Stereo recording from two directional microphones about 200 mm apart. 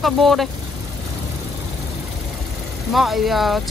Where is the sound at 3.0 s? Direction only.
Centre (ahead or behind).